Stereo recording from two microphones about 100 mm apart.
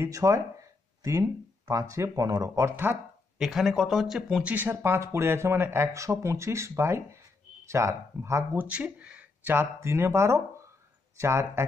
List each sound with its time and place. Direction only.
0.0 s speech: 30° right (ahead or behind)
1.7 s speech: 30° right (ahead or behind)
2.7 s speech: 20° right (ahead or behind)
3.3 s speech: 5° right (ahead or behind); by 8.6 s 25° right (ahead or behind)
8.6 s speech: 15° right (ahead or behind)